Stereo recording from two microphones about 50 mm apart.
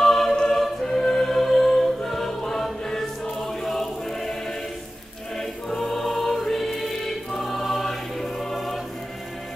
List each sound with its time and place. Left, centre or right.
0.0 s choir: centre
0.6 s music: centre
5.4 s choir: centre